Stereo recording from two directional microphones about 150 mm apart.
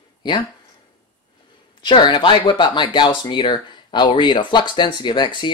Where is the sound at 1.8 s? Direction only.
30° left (ahead or behind).